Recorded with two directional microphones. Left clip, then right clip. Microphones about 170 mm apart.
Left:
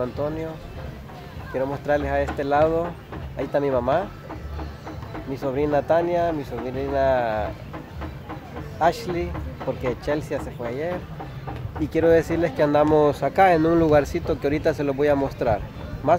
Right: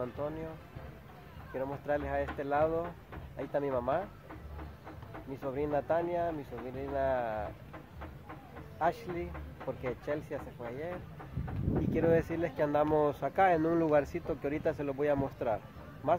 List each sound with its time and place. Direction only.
0.2 s speech: 15° right (ahead or behind)
1.5 s speech: 10° right (ahead or behind)
5.3 s speech: 10° right (ahead or behind)
8.7 s speech: 10° right (ahead or behind)
11.9 s speech: 5° right (ahead or behind)